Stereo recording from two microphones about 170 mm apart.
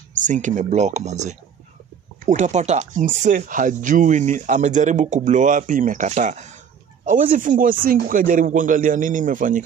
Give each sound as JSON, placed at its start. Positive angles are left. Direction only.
{"t": 0.2, "sound": "speech", "side_deg": -45}